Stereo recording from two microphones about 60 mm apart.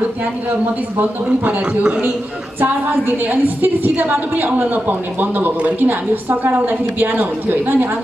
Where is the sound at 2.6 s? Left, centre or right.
Right.